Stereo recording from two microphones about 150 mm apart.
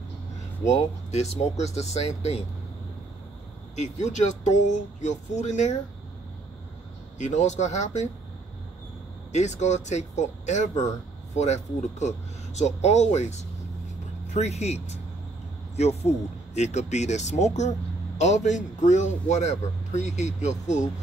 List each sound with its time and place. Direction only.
1.6 s speech: 45° left (ahead or behind)
3.7 s speech: 50° left (ahead or behind)
7.2 s speech: 50° left (ahead or behind)
9.3 s speech: 50° left (ahead or behind)